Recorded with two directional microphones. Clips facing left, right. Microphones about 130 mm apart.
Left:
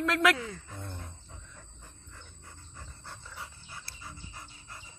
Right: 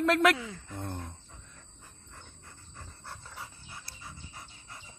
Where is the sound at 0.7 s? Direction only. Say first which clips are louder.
Right 5 dB; 50° right (ahead or behind).